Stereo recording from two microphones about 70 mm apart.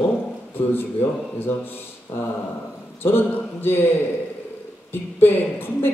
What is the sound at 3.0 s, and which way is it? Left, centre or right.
Speech, left.